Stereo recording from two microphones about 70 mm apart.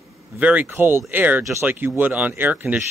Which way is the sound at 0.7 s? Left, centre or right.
Right.